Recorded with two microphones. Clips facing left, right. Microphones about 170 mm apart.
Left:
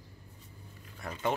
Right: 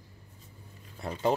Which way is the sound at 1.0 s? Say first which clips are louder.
Right 4 dB; 30° right (ahead or behind).